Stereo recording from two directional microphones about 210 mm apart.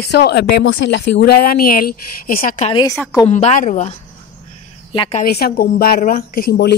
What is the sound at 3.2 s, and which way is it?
Speech, 35° left (ahead or behind).